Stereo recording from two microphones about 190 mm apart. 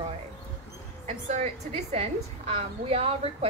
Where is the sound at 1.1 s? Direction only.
35° right (ahead or behind).